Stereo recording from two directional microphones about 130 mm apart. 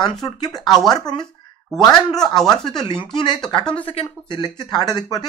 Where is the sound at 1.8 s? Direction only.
30° left (ahead or behind).